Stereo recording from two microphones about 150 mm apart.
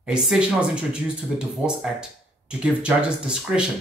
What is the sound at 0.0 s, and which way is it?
Speech, 5° right (ahead or behind).